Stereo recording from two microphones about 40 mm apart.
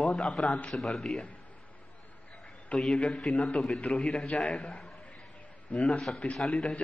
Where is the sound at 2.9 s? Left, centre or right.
Left.